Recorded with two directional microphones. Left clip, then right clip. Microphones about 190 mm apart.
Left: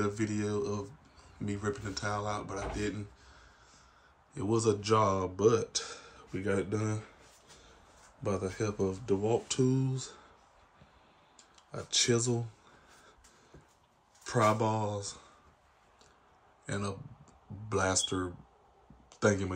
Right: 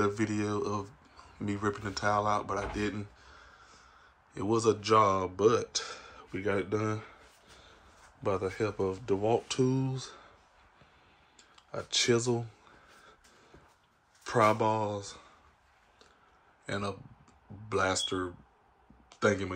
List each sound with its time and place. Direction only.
0.0 s speech: centre (ahead or behind)
8.2 s speech: 5° left (ahead or behind)
11.7 s speech: 5° left (ahead or behind)
14.2 s speech: 5° left (ahead or behind)
16.6 s speech: 10° left (ahead or behind)
19.0 s a sound: 15° left (ahead or behind)